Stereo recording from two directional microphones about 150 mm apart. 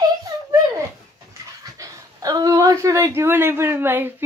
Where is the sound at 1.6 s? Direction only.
20° right (ahead or behind).